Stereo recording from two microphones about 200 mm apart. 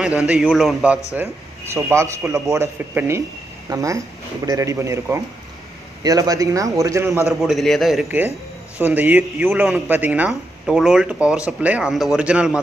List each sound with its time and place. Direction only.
0.2 s a man's voice: centre (ahead or behind)
7.2 s speech: centre (ahead or behind)